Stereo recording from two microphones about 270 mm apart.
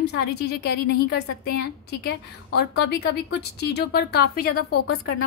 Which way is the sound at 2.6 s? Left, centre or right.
Left.